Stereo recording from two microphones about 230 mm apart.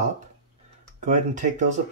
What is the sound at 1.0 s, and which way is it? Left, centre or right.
Speech, right.